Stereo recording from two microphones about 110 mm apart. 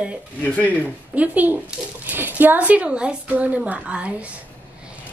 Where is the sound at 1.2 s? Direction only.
15° right (ahead or behind).